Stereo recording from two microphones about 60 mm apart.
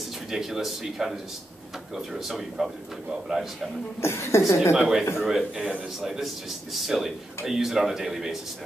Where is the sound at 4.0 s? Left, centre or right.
Left.